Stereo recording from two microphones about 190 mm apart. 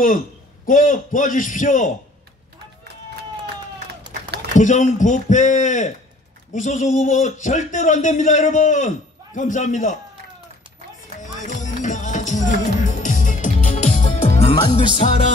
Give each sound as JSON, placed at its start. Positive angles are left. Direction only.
{"t": 0.7, "sound": "a man's voice", "side_deg": 45}
{"t": 4.6, "sound": "a man's voice", "side_deg": 40}
{"t": 11.1, "sound": "music", "side_deg": 40}